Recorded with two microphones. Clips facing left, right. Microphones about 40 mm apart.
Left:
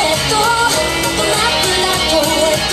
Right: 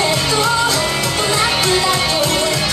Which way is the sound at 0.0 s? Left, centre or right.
Left.